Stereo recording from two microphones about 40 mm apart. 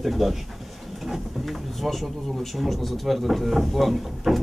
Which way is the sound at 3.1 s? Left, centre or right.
Centre.